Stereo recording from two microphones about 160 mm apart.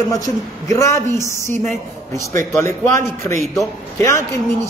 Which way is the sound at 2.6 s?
15° left (ahead or behind).